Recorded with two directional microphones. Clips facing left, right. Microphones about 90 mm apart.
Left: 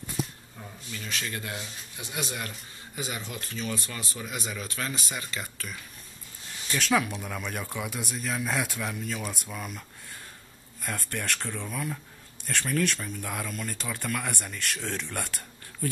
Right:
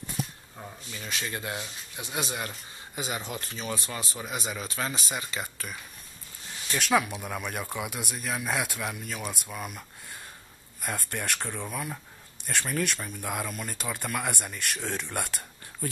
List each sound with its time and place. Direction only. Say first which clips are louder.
0.6 s speech: even; 20° right (ahead or behind)
11.0 s speech: left 2 dB; 10° right (ahead or behind)